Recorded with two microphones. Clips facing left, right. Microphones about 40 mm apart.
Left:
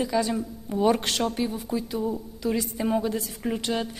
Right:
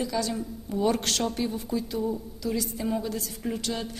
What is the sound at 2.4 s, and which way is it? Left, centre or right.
A woman's voice, left.